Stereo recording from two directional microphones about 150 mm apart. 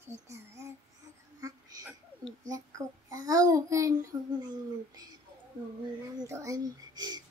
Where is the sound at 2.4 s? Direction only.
25° right (ahead or behind).